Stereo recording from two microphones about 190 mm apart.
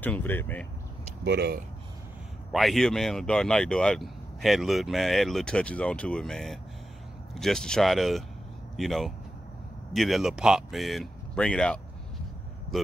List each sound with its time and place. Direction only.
0.0 s speech: 10° left (ahead or behind)
1.2 s speech: 60° right (ahead or behind)
2.5 s speech: centre (ahead or behind)